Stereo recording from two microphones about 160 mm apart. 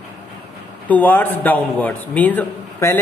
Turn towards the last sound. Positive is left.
turn(degrees=10)  # may be behind; listen again after turning